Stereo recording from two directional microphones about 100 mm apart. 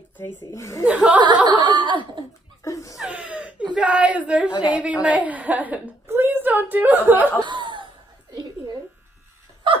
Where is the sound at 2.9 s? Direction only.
5° right (ahead or behind).